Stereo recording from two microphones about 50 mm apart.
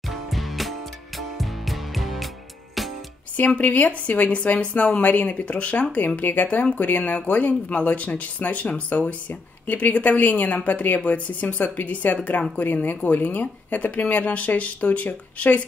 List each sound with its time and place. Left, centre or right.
0.1 s music: centre
3.3 s speech: left